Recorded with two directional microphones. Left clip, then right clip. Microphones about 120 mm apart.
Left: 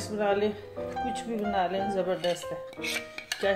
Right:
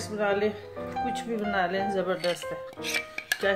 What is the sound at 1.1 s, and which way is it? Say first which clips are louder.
Speech: right 2 dB; 25° right (ahead or behind).